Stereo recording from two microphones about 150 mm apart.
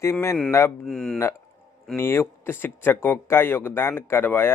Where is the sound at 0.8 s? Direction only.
5° left (ahead or behind).